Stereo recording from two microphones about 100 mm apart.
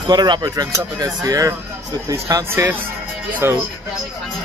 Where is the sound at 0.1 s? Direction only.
45° right (ahead or behind).